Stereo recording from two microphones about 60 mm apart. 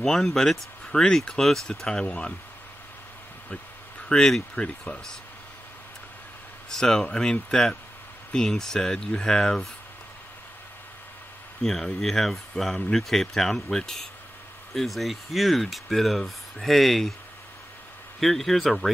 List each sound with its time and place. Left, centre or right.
0.0 s speech: centre
4.1 s speech: centre
6.7 s speech: centre
11.6 s speech: centre
18.2 s speech: centre